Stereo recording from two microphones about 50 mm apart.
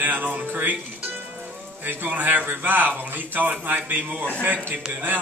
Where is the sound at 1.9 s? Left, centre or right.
Right.